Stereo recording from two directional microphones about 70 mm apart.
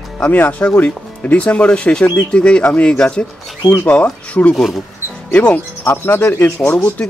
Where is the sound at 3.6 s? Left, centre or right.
Left.